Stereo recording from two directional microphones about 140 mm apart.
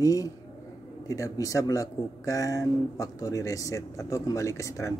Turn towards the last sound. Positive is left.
turn(degrees=20)  # may be behind; listen again after turning